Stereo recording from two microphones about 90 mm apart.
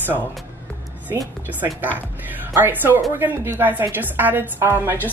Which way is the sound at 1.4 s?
20° right (ahead or behind).